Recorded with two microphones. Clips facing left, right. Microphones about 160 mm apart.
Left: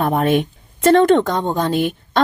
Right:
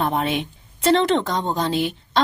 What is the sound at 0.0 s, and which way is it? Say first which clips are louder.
A woman's voice: left 6 dB; 50° left (ahead or behind).